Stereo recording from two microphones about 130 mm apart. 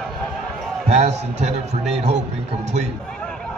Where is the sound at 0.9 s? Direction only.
60° right (ahead or behind).